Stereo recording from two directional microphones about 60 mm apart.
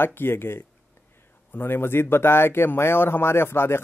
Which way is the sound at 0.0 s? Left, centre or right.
Left.